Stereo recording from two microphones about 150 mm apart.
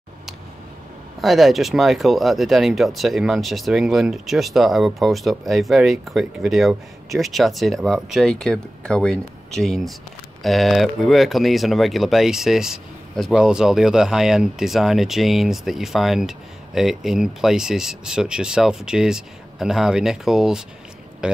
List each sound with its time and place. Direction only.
1.2 s speech: centre (ahead or behind)